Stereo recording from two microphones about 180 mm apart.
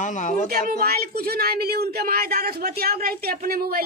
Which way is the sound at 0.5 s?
60° right (ahead or behind).